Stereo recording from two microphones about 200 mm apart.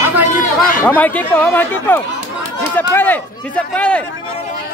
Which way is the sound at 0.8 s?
10° left (ahead or behind).